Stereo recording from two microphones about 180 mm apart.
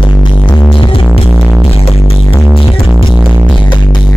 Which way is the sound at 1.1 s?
5° left (ahead or behind).